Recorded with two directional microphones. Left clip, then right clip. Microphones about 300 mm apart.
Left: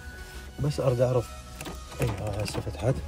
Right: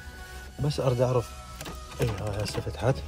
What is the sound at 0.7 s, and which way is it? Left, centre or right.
Speech, centre.